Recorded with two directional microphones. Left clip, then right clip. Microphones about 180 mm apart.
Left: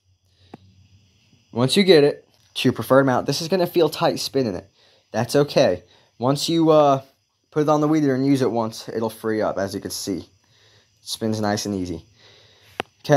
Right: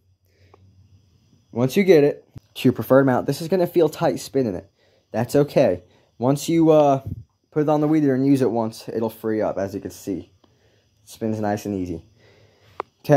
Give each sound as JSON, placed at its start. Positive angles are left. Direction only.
{"t": 1.5, "sound": "speech", "side_deg": -5}
{"t": 2.6, "sound": "speech", "side_deg": -20}
{"t": 9.8, "sound": "speech", "side_deg": 0}
{"t": 11.3, "sound": "speech", "side_deg": -10}
{"t": 12.2, "sound": "a sound", "side_deg": -15}